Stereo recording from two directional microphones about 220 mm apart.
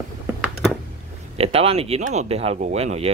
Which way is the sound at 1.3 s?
25° right (ahead or behind).